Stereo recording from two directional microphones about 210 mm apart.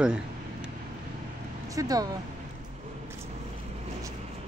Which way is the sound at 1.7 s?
15° right (ahead or behind).